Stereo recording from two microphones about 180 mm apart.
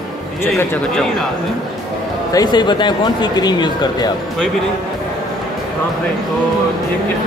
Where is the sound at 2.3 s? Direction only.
25° left (ahead or behind).